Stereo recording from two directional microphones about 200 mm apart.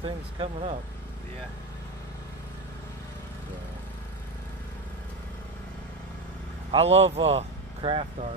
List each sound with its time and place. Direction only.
0.0 s speech: 30° right (ahead or behind)
6.7 s speech: 30° right (ahead or behind)